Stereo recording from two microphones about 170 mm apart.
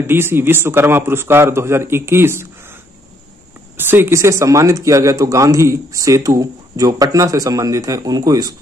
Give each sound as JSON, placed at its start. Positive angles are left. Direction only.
{"t": 0.0, "sound": "speech", "side_deg": -15}
{"t": 3.7, "sound": "speech", "side_deg": -10}